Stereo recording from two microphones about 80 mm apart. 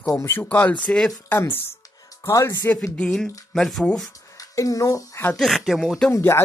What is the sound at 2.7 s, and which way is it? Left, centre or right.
Speech, centre.